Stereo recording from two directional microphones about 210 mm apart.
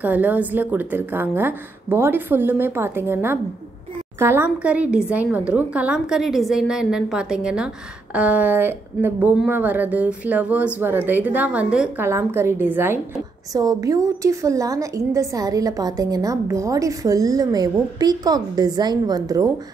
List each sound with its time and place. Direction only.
0.0 s a woman's voice: 5° right (ahead or behind)